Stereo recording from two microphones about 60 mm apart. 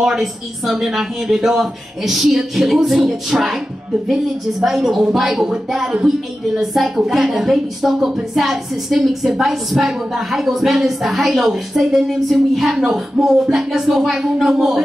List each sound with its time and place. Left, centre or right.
0.0 s a woman's voice: centre